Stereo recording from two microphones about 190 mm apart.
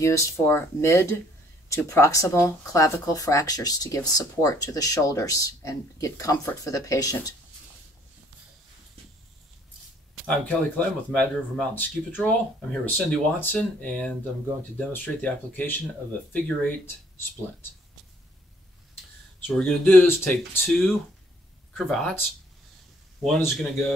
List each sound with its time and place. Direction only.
0.0 s speech: 15° left (ahead or behind)
10.2 s speech: 5° left (ahead or behind)
19.4 s speech: 5° left (ahead or behind)
23.2 s speech: 5° left (ahead or behind)